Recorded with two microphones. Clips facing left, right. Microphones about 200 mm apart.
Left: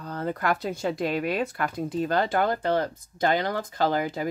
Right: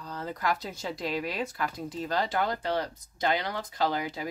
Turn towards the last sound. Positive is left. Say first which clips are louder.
# left 5 dB
turn(degrees=50)  # may be behind; listen again after turning